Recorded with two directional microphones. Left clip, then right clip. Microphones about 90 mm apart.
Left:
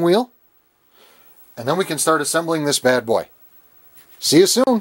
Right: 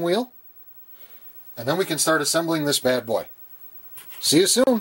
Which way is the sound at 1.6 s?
30° left (ahead or behind).